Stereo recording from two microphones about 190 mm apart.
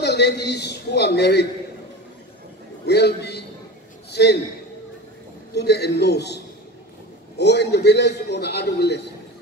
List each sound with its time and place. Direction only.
0.0 s a man's voice: 60° left (ahead or behind)
2.9 s a man's voice: 60° left (ahead or behind)
5.5 s a man's voice: 60° left (ahead or behind)